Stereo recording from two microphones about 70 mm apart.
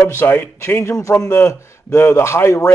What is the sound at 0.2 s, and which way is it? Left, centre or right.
Speech, left.